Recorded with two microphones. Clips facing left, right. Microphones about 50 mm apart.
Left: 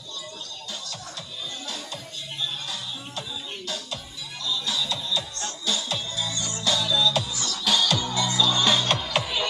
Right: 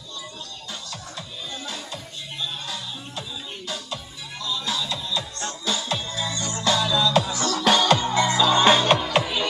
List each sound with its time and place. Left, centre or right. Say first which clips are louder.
2.7 s music: right 1 dB; centre
5.7 s music: right 2 dB; right; by 9.5 s centre